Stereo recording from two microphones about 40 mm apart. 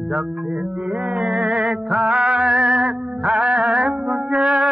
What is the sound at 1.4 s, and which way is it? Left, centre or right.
Music, right.